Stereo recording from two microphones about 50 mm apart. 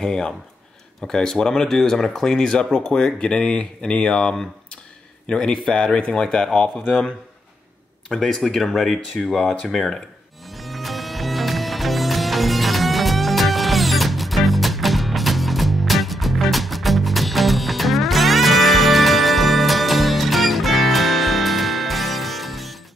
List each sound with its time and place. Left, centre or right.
0.0 s speech: centre
8.2 s speech: centre
10.5 s music: centre